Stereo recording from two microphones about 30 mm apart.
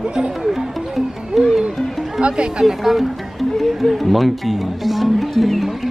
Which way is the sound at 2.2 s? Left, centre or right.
Right.